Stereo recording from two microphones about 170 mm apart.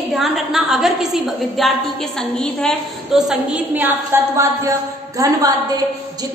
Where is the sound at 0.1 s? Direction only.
Centre (ahead or behind).